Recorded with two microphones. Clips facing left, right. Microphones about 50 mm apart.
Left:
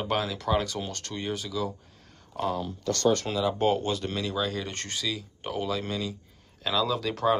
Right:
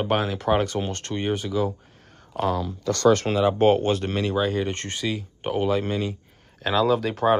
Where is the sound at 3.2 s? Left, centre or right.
Right.